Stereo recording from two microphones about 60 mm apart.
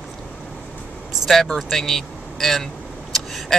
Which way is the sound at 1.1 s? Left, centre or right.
Centre.